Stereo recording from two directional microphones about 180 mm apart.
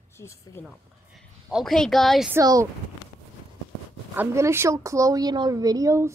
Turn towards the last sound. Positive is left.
turn(degrees=-15)  # may be behind; listen again after turning